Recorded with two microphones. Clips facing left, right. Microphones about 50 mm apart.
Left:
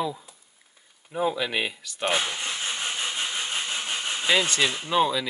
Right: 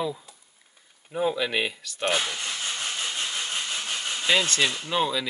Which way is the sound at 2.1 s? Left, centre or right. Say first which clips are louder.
Left 1 dB; centre.